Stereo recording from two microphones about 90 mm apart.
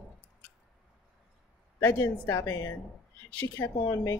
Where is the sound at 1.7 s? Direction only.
30° left (ahead or behind).